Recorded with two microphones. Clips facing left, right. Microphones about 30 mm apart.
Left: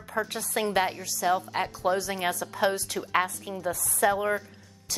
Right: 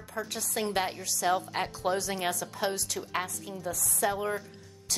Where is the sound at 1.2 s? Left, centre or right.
Centre.